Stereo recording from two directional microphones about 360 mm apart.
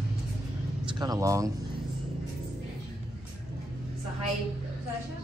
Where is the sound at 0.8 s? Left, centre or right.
Centre.